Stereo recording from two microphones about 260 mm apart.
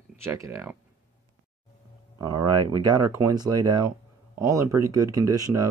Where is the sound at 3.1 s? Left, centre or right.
Centre.